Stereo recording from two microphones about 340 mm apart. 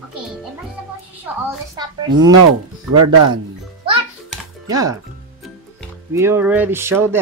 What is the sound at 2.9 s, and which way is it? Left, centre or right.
Speech, right.